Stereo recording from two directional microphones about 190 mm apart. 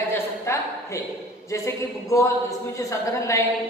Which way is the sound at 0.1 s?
15° left (ahead or behind).